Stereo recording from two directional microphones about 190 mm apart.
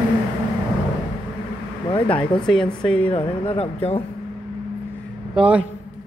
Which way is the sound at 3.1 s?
30° left (ahead or behind).